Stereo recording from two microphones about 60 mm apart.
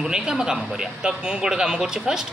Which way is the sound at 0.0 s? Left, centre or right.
Centre.